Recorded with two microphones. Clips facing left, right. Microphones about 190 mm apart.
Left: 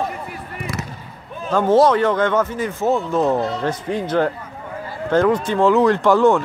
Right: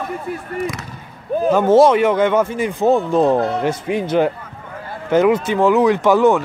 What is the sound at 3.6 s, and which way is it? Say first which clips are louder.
Speech: right 3 dB; 10° right (ahead or behind).